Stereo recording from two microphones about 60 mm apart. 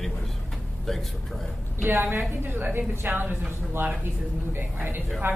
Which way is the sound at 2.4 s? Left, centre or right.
Right.